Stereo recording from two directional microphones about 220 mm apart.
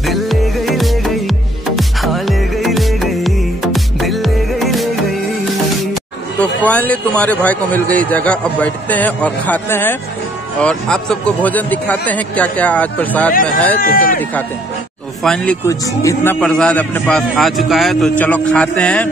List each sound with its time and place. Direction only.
0.0 s music: centre (ahead or behind)
6.4 s a man's voice: 5° left (ahead or behind)
13.7 s speech: 40° left (ahead or behind)
15.2 s a man's voice: 5° left (ahead or behind)